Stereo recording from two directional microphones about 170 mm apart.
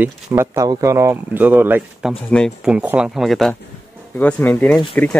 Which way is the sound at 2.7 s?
5° right (ahead or behind).